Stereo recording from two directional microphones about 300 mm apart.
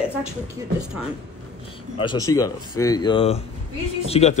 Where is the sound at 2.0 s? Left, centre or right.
Centre.